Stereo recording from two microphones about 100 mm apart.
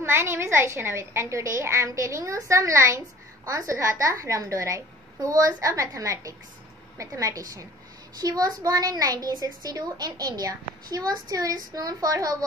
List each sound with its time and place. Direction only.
0.0 s a woman's voice: 25° right (ahead or behind)